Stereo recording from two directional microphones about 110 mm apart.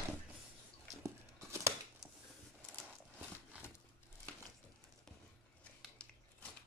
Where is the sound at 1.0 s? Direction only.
25° right (ahead or behind).